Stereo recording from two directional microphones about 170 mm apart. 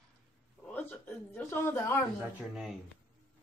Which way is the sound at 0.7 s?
10° left (ahead or behind).